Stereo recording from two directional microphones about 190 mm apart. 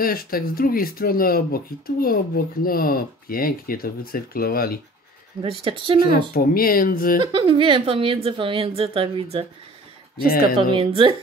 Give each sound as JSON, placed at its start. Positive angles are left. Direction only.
{"t": 0.0, "sound": "speech", "side_deg": 50}
{"t": 5.4, "sound": "a woman's voice", "side_deg": -30}
{"t": 6.3, "sound": "speech", "side_deg": 50}
{"t": 7.2, "sound": "a woman's voice", "side_deg": -25}
{"t": 10.7, "sound": "a woman's voice", "side_deg": -30}